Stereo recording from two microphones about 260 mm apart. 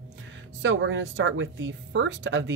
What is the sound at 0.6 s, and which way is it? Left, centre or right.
Speech, right.